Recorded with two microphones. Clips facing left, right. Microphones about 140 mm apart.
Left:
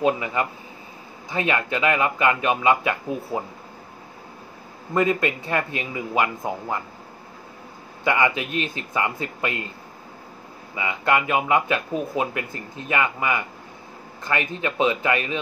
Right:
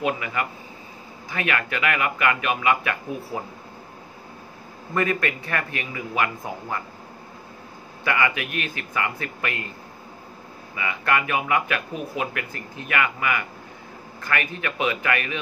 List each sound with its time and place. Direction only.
0.0 s speech: 30° left (ahead or behind)
4.9 s speech: 20° left (ahead or behind)
8.0 s speech: 20° left (ahead or behind)
10.8 s speech: 20° left (ahead or behind)